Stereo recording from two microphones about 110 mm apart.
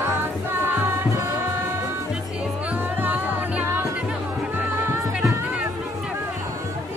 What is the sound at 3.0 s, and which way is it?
Music, 15° right (ahead or behind).